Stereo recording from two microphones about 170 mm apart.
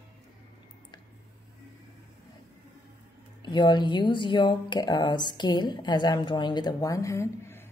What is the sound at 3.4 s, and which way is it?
A woman's voice, 25° left (ahead or behind).